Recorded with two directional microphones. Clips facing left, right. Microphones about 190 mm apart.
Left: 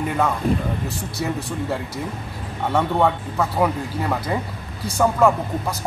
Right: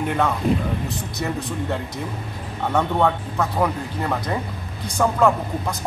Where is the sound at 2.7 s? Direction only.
5° left (ahead or behind).